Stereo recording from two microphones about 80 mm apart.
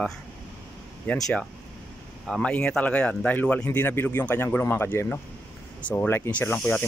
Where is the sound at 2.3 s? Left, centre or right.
Centre; by 5.2 s left.